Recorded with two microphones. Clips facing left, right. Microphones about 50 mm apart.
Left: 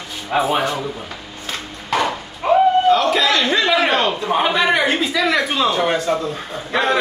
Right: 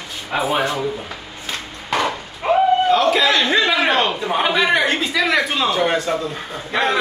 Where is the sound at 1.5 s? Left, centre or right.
Centre.